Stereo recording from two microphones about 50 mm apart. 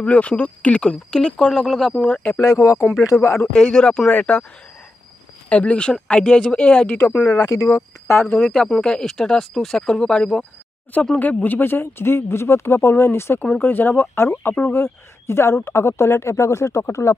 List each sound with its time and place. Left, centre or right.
0.0 s speech: left; by 2.0 s centre
2.0 s speech: left
2.5 s speech: left
3.3 s speech: centre
5.5 s speech: left
7.5 s speech: left
8.4 s speech: centre
11.1 s speech: left
13.6 s speech: left
14.1 s speech: left